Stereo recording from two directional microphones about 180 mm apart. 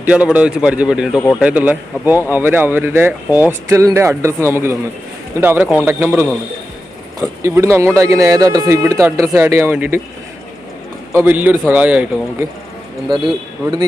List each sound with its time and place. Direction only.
0.0 s speech: 10° right (ahead or behind)
7.4 s speech: 15° right (ahead or behind)
11.1 s speech: 10° right (ahead or behind)